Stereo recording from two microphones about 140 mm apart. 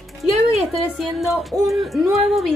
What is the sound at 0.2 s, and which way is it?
A woman's voice, centre (ahead or behind).